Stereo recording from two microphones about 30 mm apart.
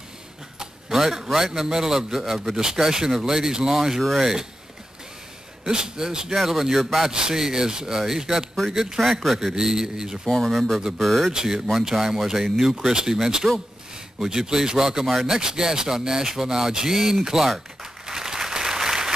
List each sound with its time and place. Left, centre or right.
0.6 s a man's voice: centre
2.6 s speech: centre
5.7 s speech: right
6.3 s speech: centre
7.0 s speech: right; by 9.2 s centre
9.6 s speech: centre
10.2 s speech: centre
11.3 s speech: right
15.4 s speech: right
18.0 s applause: centre